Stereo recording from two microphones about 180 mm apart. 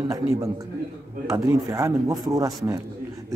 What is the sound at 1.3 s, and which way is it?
A man's voice, 15° right (ahead or behind).